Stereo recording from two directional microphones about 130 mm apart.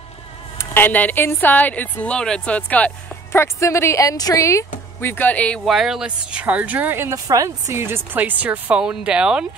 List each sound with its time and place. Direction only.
0.6 s speech: 15° left (ahead or behind)
5.7 s speech: centre (ahead or behind)